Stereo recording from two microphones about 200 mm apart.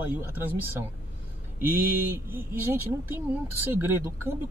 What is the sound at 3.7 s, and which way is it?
Speech, 10° right (ahead or behind).